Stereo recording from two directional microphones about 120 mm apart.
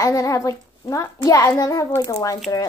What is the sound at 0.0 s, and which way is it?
A child's voice, 25° left (ahead or behind).